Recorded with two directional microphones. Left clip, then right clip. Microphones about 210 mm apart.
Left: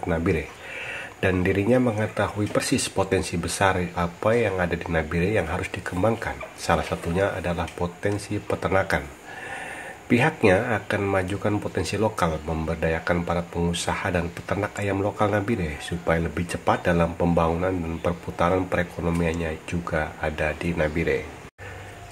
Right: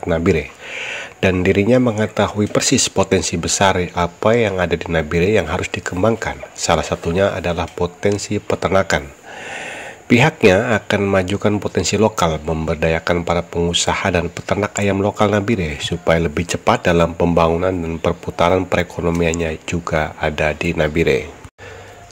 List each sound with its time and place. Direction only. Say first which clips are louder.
0.0 s speech: right 8 dB; 35° right (ahead or behind)
10.0 s speech: right 7 dB; 35° right (ahead or behind)